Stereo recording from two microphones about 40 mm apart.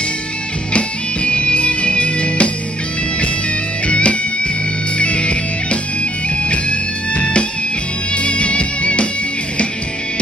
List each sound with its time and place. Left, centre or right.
0.7 s music: left
3.8 s music: left